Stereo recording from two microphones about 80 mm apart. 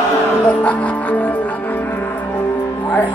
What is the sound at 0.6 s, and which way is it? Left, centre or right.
Music, centre.